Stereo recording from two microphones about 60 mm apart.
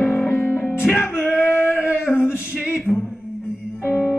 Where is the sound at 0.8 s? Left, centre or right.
Centre.